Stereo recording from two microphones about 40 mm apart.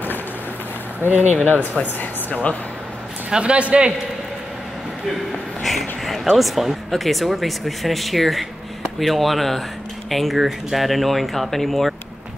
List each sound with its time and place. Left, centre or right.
1.0 s speech: left
1.4 s speech: left
3.3 s a man's voice: right
5.6 s a sound: centre
6.3 s speech: centre